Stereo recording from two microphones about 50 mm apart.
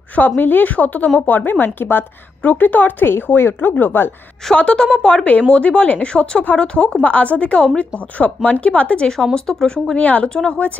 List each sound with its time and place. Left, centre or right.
0.4 s speech: left
4.6 s a woman's voice: centre
9.9 s a woman's voice: left